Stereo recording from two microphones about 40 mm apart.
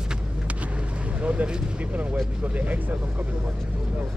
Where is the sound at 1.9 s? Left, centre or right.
Right.